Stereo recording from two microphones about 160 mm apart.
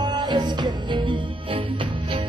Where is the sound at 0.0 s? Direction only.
25° right (ahead or behind).